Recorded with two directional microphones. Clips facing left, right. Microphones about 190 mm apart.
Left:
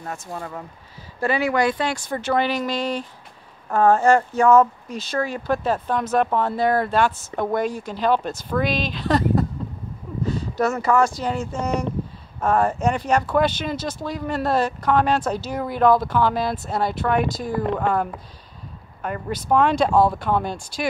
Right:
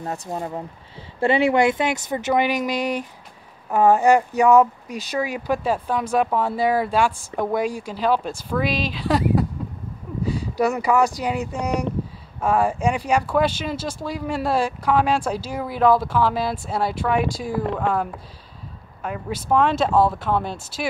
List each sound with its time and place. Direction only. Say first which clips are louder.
0.3 s speech: right 4 dB; 20° right (ahead or behind)
10.6 s speech: even; 15° right (ahead or behind)
19.0 s speech: left 1 dB; 5° right (ahead or behind)